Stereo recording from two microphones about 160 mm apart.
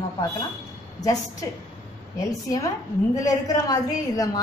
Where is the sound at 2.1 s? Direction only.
25° left (ahead or behind).